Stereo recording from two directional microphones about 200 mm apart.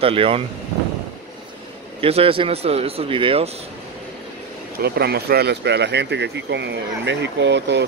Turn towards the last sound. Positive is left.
turn(degrees=-60)  # may be behind; listen again after turning